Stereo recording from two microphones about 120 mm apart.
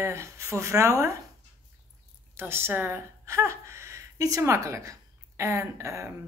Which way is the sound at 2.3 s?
20° right (ahead or behind).